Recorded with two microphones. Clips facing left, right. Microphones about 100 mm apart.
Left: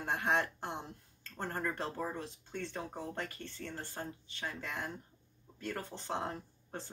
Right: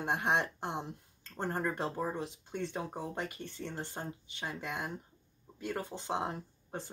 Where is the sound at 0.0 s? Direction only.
20° right (ahead or behind).